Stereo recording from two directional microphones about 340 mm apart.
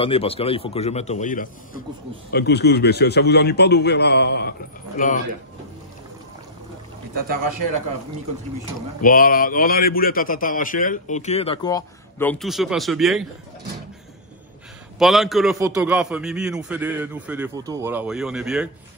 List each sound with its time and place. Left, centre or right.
0.0 s a man's voice: centre
9.0 s a man's voice: left; by 13.3 s centre
15.0 s a man's voice: centre